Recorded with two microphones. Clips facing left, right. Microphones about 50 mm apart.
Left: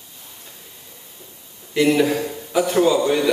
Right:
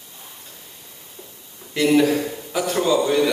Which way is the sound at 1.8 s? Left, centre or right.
Centre.